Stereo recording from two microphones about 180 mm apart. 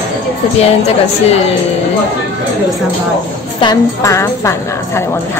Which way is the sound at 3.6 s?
15° left (ahead or behind).